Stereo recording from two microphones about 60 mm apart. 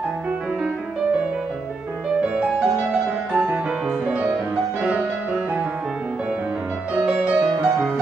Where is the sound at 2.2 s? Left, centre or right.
Centre.